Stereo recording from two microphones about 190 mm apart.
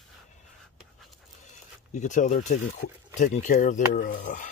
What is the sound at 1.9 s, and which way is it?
Speech, 40° left (ahead or behind).